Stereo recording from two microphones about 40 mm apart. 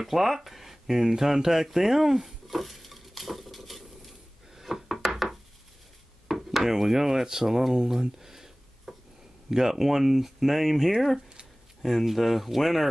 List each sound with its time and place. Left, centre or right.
0.0 s a sound: centre
4.6 s wood: centre
9.5 s speech: centre